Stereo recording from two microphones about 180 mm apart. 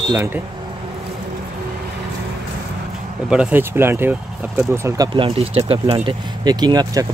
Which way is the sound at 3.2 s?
10° right (ahead or behind).